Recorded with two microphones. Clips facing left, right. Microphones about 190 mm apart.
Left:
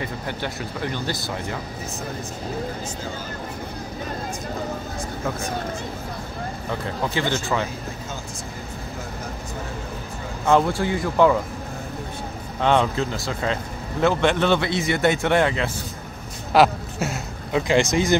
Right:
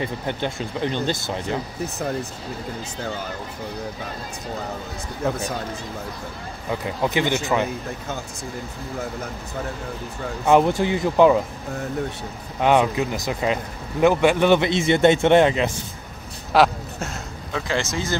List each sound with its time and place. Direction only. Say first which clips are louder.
0.0 s a man's voice: right 3 dB; 25° right (ahead or behind)
6.7 s speech: right 4 dB; 15° right (ahead or behind)
10.4 s a man's voice: right 2 dB; 20° right (ahead or behind)
12.5 s a man's voice: right 2 dB; 10° right (ahead or behind)
16.5 s a sound: left 1 dB; 5° left (ahead or behind)
17.5 s speech: left 6 dB; 15° left (ahead or behind)